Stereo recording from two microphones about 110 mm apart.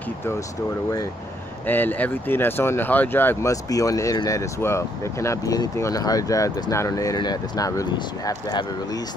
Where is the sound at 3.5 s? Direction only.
30° left (ahead or behind).